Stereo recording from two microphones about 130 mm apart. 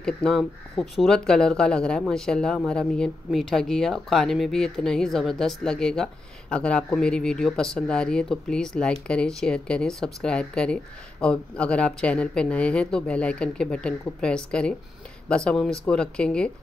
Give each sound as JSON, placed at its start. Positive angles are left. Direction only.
{"t": 0.0, "sound": "speech", "side_deg": 5}